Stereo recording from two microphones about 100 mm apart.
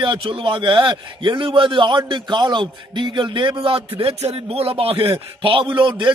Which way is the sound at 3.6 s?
65° right (ahead or behind).